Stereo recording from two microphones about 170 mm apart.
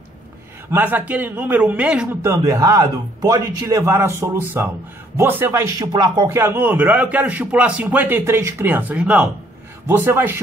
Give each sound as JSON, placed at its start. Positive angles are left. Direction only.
{"t": 0.7, "sound": "speech", "side_deg": -10}
{"t": 2.3, "sound": "a man's voice", "side_deg": -20}